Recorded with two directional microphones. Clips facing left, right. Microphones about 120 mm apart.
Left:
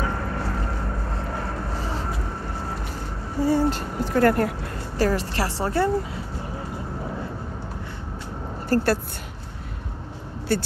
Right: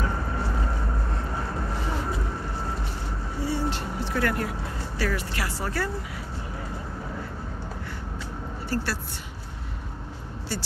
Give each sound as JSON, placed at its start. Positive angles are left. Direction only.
{"t": 3.4, "sound": "speech", "side_deg": 45}
{"t": 8.6, "sound": "speech", "side_deg": 50}
{"t": 10.5, "sound": "speech", "side_deg": 55}